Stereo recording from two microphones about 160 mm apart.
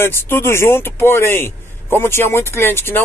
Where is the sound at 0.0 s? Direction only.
15° left (ahead or behind).